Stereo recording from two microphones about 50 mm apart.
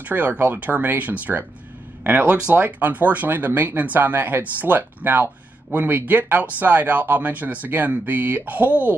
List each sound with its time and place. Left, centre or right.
0.0 s speech: right